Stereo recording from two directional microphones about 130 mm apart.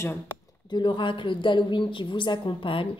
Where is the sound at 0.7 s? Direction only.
40° left (ahead or behind).